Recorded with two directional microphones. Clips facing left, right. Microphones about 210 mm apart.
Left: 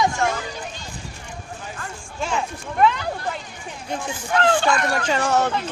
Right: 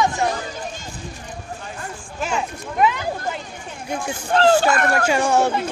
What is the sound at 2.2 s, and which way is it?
Speech, 10° right (ahead or behind).